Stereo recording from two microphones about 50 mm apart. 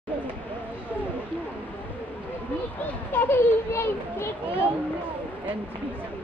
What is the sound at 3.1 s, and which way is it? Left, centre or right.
A child's voice, left.